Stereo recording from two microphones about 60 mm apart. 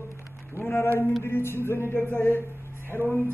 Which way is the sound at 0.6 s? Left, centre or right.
Left.